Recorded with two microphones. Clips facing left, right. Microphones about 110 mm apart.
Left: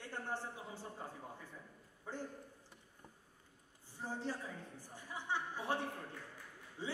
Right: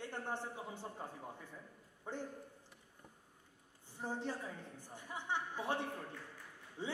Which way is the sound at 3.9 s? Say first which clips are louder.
Right 1 dB; 20° right (ahead or behind).